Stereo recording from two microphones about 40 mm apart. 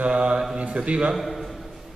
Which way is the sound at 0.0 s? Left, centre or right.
Right.